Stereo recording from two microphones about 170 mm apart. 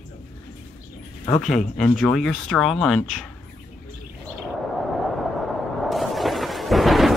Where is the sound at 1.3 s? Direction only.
45° left (ahead or behind).